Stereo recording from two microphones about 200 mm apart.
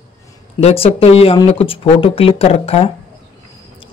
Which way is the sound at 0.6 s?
30° left (ahead or behind).